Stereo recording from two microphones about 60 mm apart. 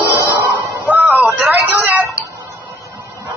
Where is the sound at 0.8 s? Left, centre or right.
Right.